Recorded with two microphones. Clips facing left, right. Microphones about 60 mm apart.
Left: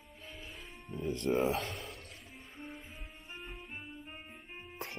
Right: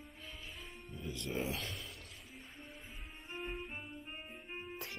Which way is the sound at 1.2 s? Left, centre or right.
Left.